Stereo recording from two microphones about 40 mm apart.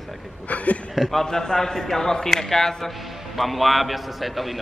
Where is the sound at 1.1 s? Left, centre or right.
Centre.